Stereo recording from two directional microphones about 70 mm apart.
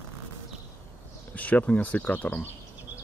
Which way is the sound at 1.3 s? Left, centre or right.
Left.